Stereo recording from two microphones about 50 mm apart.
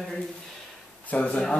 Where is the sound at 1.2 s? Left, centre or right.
Left.